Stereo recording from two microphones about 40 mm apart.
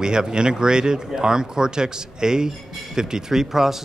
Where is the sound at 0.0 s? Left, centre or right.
Centre.